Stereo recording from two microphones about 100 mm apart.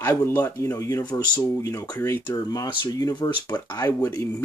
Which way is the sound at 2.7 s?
50° left (ahead or behind).